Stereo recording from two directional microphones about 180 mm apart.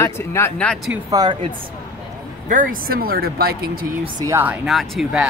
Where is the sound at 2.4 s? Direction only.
50° right (ahead or behind).